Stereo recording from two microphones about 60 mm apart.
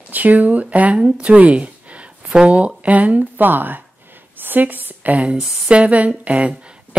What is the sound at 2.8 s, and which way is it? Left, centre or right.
A woman's voice, right.